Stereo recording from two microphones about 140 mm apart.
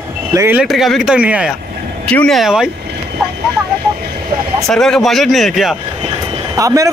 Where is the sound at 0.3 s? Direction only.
20° right (ahead or behind).